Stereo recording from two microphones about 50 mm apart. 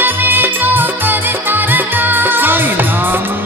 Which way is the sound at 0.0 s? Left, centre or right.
Right.